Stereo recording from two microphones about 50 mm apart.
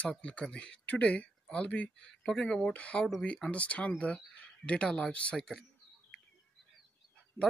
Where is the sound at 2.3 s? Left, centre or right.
Centre.